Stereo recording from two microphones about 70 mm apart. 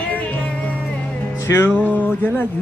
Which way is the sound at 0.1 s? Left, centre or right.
Left.